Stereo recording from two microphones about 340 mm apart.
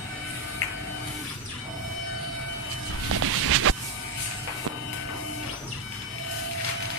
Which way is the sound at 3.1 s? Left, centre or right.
Right.